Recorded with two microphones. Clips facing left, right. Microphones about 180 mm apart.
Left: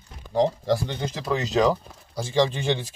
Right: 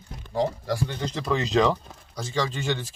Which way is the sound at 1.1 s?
Centre (ahead or behind).